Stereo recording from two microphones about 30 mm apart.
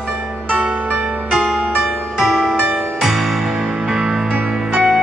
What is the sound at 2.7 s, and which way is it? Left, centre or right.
Music, centre.